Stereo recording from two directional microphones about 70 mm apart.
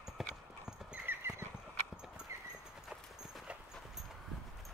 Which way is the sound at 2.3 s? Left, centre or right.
Right.